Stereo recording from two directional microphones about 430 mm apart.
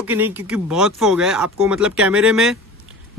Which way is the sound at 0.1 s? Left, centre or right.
Centre.